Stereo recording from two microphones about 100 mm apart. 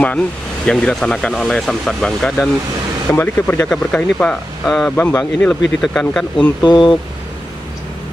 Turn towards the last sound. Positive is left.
turn(degrees=50)  # may be behind; listen again after turning